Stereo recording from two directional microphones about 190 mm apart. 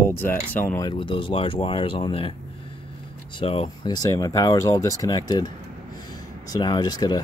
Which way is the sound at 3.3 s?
30° left (ahead or behind).